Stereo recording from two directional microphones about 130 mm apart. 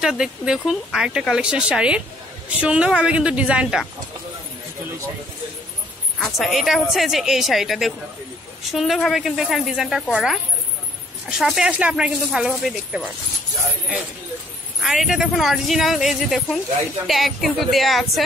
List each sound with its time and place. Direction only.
0.0 s a woman's voice: 5° right (ahead or behind)
6.1 s speech: centre (ahead or behind)
14.8 s speech: centre (ahead or behind)